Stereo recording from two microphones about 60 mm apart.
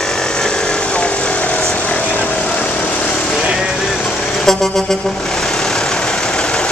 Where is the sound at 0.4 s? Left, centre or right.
Centre.